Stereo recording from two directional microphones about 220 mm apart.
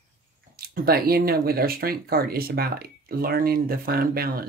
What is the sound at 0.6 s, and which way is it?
Speech, 45° right (ahead or behind).